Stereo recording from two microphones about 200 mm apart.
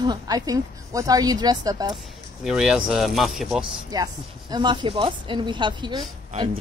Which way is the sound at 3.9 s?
20° right (ahead or behind).